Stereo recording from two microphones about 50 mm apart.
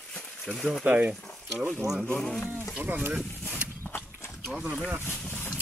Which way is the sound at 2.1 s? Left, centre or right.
Centre.